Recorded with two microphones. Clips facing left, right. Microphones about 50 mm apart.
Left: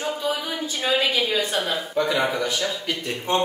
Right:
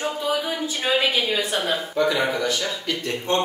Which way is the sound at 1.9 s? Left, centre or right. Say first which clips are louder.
Right 1 dB; centre.